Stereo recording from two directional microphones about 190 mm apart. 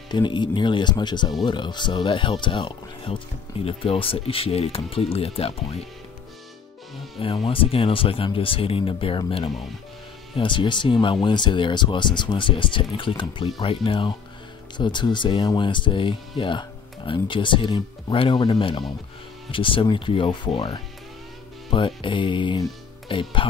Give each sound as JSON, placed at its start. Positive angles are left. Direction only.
{"t": 0.1, "sound": "speech", "side_deg": 25}
{"t": 7.4, "sound": "speech", "side_deg": 30}